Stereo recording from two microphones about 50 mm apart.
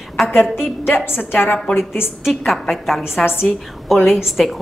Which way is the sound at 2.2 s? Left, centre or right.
Centre.